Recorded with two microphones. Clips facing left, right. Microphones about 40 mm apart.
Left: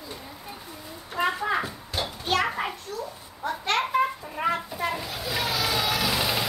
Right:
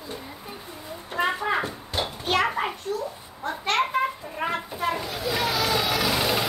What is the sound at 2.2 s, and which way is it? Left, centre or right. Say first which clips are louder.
Children playing: right 2 dB; centre.